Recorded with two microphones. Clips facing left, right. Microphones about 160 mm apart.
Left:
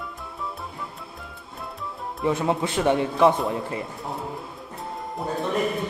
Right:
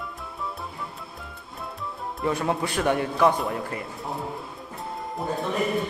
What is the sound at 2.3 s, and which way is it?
Speech, 20° left (ahead or behind).